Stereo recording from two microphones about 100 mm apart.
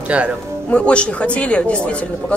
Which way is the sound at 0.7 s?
10° left (ahead or behind).